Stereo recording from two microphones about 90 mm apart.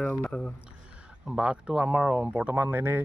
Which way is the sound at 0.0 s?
10° left (ahead or behind).